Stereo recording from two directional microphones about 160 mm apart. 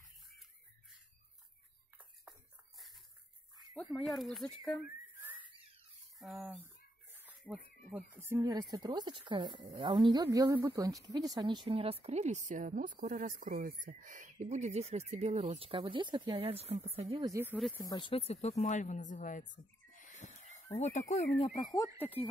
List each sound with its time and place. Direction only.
3.9 s speech: centre (ahead or behind)
5.2 s a sound: 10° right (ahead or behind)
6.1 s speech: centre (ahead or behind); by 15.4 s 45° right (ahead or behind)
15.4 s speech: 35° right (ahead or behind)
17.2 s speech: 15° right (ahead or behind)
17.9 s speech: 35° left (ahead or behind)
21.5 s speech: 20° left (ahead or behind)
22.0 s speech: 10° left (ahead or behind)